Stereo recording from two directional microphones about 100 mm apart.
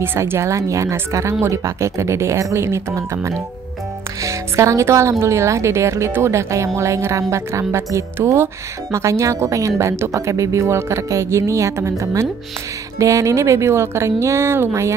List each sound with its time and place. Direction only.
0.0 s speech: 25° right (ahead or behind)